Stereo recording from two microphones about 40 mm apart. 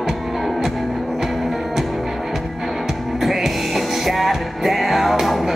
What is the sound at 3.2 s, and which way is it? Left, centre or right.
Music, centre.